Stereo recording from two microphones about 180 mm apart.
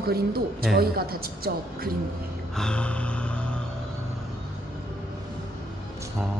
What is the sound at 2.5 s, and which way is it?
Music, 5° left (ahead or behind).